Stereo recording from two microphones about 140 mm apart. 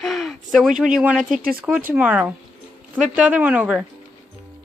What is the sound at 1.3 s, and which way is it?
Speech, 90° right.